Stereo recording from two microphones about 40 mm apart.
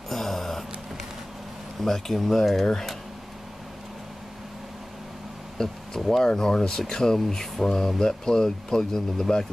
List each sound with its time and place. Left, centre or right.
0.1 s a sound: centre
1.8 s speech: centre
5.6 s speech: centre
7.2 s speech: centre